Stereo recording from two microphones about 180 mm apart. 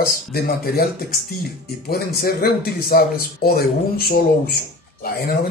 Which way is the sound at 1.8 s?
60° left (ahead or behind).